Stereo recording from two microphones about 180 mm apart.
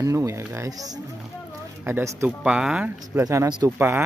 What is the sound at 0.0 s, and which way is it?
Speech, 15° right (ahead or behind).